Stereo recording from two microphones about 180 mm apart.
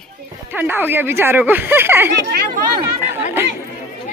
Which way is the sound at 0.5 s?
10° right (ahead or behind).